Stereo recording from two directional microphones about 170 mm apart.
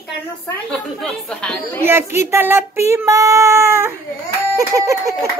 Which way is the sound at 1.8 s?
15° right (ahead or behind).